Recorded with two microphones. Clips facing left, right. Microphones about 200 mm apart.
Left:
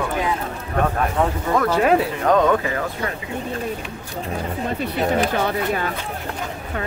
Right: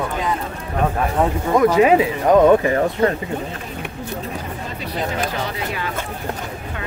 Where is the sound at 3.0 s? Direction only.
50° right (ahead or behind).